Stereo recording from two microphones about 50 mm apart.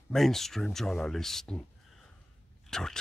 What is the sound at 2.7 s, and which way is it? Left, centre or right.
Speech, centre.